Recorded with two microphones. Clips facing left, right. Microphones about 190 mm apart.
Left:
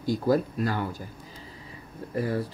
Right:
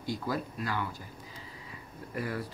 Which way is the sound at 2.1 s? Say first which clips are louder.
Left 7 dB; 30° left (ahead or behind).